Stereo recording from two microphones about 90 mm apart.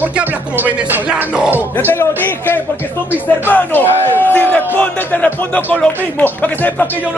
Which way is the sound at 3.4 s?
20° left (ahead or behind).